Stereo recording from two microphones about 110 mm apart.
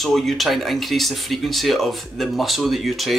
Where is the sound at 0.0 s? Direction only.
Centre (ahead or behind).